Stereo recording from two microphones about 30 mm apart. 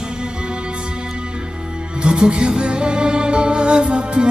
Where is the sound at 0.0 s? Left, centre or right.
Right.